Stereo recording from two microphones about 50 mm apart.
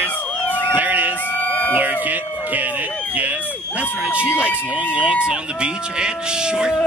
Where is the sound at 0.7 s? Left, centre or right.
Right.